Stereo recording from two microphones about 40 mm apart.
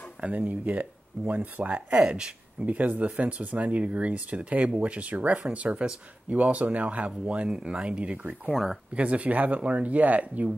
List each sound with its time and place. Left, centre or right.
0.3 s speech: right
7.1 s speech: right
8.5 s speech: centre
8.9 s speech: right